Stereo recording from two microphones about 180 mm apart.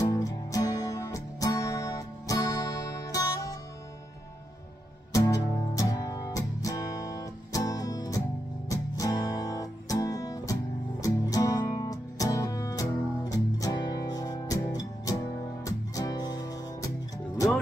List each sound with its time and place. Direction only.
0.1 s music: 20° left (ahead or behind)
5.1 s music: 20° left (ahead or behind)